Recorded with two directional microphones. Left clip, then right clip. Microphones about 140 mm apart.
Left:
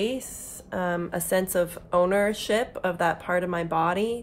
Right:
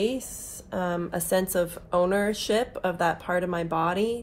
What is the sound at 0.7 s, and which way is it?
A woman's voice, 10° left (ahead or behind).